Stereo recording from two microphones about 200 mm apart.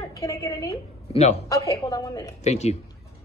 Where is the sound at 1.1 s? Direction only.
30° left (ahead or behind).